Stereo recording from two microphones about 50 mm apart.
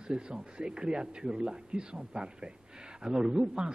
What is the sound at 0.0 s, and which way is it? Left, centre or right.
Speech, centre.